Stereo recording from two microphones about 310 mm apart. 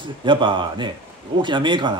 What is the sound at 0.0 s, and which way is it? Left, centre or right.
Speech, centre.